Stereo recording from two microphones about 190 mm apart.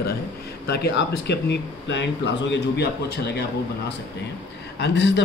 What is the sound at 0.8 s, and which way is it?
Speech, 60° left (ahead or behind).